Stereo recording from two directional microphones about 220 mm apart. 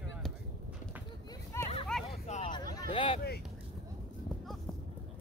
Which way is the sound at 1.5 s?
10° left (ahead or behind).